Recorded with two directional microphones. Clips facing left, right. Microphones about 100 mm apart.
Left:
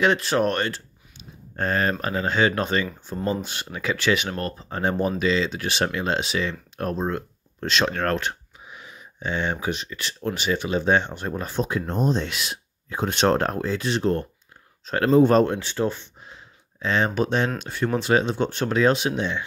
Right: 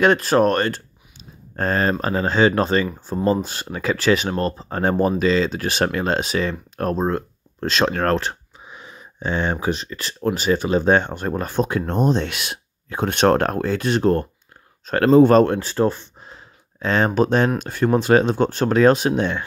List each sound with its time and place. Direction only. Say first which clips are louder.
0.0 s speech: right 5 dB; 45° right (ahead or behind)
15.0 s speech: right 4 dB; 75° right (ahead or behind)
15.6 s speech: right 5 dB; 40° right (ahead or behind)